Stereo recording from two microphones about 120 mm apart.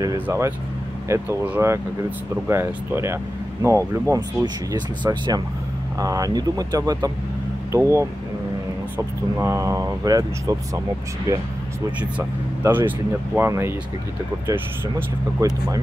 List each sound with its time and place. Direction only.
0.0 s speech: 25° right (ahead or behind)
12.6 s speech: 15° right (ahead or behind)